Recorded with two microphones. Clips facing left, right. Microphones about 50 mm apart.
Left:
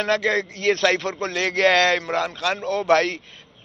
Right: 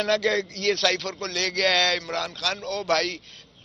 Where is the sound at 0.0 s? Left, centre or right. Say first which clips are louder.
Left 2 dB; centre.